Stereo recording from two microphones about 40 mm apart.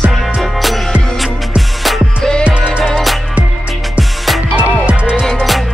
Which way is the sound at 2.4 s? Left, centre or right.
Right.